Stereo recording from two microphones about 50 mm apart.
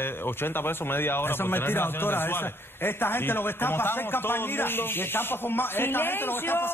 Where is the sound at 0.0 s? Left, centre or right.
Left.